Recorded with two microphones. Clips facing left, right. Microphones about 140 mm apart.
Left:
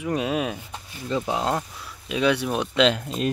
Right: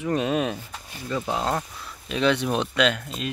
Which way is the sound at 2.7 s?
25° left (ahead or behind).